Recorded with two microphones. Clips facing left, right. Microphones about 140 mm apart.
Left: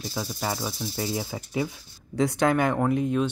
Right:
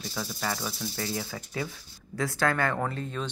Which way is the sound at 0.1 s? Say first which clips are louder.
Left 3 dB; 20° left (ahead or behind).